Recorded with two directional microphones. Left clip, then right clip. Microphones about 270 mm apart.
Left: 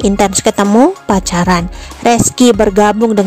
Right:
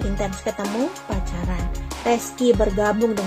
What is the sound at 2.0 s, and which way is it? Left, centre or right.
Speech, left.